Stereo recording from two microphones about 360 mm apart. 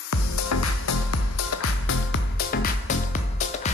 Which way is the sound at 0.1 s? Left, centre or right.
Left.